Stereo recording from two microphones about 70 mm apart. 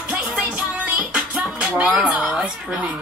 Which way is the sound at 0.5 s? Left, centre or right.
Centre.